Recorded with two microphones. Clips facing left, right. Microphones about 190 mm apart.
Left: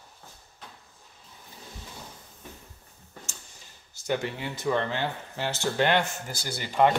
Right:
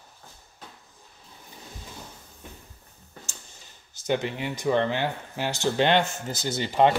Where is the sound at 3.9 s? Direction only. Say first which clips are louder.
Right 3 dB; 20° right (ahead or behind).